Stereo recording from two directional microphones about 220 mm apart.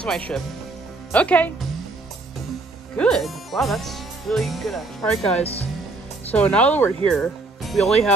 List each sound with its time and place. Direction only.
0.3 s speech: 5° left (ahead or behind)
3.0 s speech: centre (ahead or behind)
5.4 s speech: 25° left (ahead or behind)
6.3 s speech: 5° left (ahead or behind)